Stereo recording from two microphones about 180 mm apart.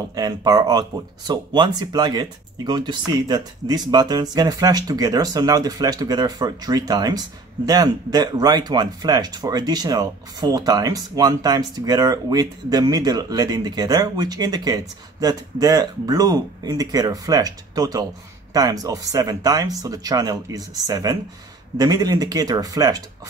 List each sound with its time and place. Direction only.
0.1 s speech: 20° right (ahead or behind)